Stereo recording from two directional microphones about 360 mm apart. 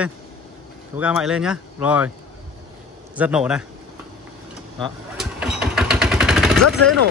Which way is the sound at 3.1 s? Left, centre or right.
Centre.